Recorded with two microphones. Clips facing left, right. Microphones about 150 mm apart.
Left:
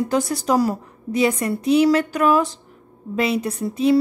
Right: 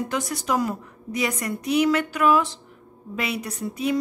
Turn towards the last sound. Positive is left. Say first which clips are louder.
# left 7 dB
turn(degrees=30)  # may be behind; listen again after turning